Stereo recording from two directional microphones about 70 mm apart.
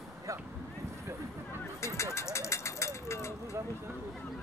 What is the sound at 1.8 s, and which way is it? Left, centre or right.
Speech, left.